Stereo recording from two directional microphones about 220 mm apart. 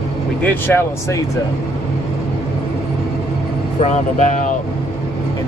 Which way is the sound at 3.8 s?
35° left (ahead or behind).